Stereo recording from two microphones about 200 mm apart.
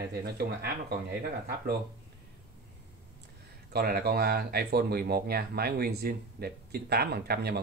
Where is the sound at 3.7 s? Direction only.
50° right (ahead or behind).